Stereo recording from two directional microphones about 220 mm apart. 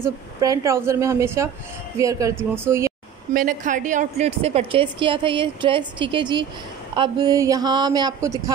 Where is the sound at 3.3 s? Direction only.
40° right (ahead or behind).